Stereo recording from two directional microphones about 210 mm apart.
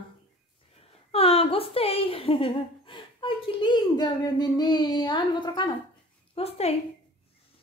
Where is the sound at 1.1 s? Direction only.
30° left (ahead or behind).